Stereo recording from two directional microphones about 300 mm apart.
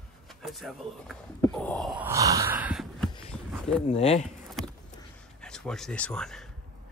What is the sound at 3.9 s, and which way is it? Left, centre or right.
Speech, left.